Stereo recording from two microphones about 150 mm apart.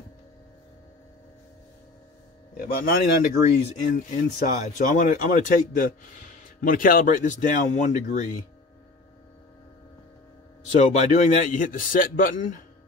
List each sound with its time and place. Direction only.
2.5 s a man's voice: 75° left (ahead or behind); by 3.3 s 90° left
3.3 s a man's voice: 60° left (ahead or behind)
10.7 s a man's voice: 55° left (ahead or behind)